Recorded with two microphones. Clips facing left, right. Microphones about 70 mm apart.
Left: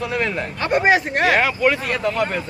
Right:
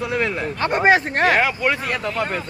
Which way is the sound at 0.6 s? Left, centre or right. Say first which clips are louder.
Even; right.